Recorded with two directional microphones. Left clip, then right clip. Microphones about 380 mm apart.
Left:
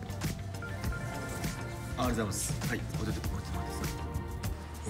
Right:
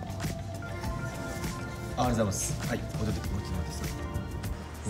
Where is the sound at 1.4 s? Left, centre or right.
Centre.